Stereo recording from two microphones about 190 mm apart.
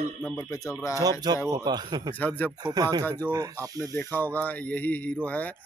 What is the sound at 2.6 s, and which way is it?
A man's voice, 20° right (ahead or behind).